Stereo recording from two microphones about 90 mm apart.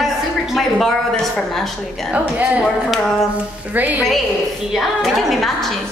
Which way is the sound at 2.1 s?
15° right (ahead or behind).